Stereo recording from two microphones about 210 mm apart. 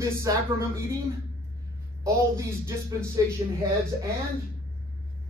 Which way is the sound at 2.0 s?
15° right (ahead or behind).